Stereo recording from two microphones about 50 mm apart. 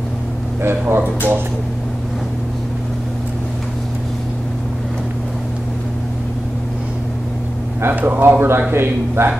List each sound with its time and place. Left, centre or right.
0.6 s speech: right
7.9 s speech: right